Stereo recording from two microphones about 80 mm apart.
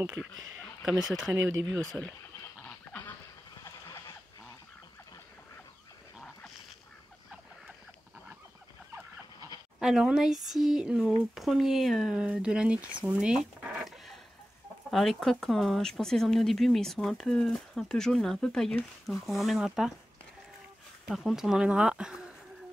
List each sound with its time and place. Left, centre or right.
0.2 s speech: centre
1.3 s speech: right
1.6 s speech: right
2.6 s dog: centre
9.8 s speech: centre
12.2 s speech: centre
14.9 s speech: centre
18.8 s speech: centre
21.1 s speech: centre